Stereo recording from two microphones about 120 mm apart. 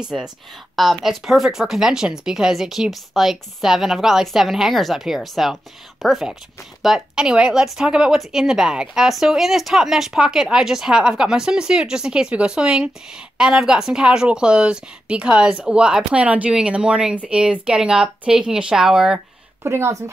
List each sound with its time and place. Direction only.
0.0 s a woman's voice: 5° right (ahead or behind)
19.6 s speech: 20° right (ahead or behind)